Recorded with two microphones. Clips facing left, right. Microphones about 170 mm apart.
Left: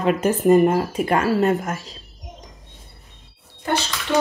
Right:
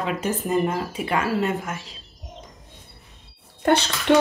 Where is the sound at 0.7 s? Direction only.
40° left (ahead or behind).